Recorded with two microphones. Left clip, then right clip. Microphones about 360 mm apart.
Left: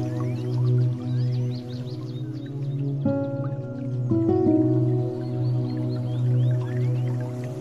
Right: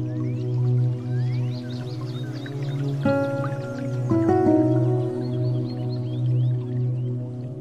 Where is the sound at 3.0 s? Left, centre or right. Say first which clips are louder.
Right 5 dB; right.